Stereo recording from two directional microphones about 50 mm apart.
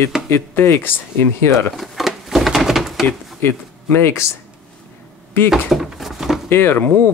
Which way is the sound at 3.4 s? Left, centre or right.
Left.